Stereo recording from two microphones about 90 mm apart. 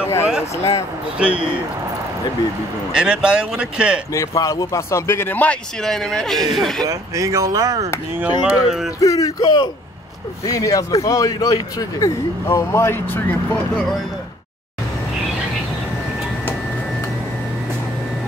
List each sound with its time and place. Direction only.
0.0 s a sound: 30° left (ahead or behind)
0.6 s speech: 30° left (ahead or behind)
1.1 s speech: 15° right (ahead or behind)
2.9 s speech: 10° right (ahead or behind)
4.1 s speech: 35° left (ahead or behind); by 5.6 s 20° left (ahead or behind)
5.8 s speech: 5° left (ahead or behind)
6.9 s speech: 35° right (ahead or behind)
8.6 s speech: 5° right (ahead or behind)
9.0 s speech: 40° left (ahead or behind)
10.4 s speech: 40° left (ahead or behind); by 13.6 s 20° left (ahead or behind)